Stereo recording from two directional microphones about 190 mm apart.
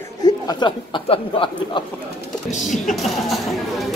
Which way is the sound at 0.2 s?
20° left (ahead or behind).